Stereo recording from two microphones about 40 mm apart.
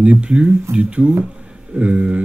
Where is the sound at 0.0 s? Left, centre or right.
Right.